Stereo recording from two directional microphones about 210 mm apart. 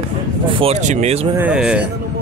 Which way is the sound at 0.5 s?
25° right (ahead or behind).